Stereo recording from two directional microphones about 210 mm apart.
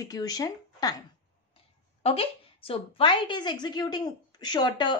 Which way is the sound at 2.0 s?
25° left (ahead or behind).